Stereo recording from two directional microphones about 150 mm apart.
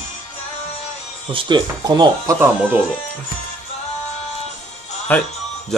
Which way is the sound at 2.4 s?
10° right (ahead or behind).